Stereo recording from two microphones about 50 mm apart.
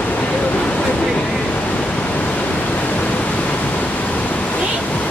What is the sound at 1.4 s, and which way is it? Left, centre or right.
Pink noise, left.